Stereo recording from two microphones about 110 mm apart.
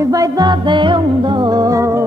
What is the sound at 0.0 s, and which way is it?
Music, 35° right (ahead or behind).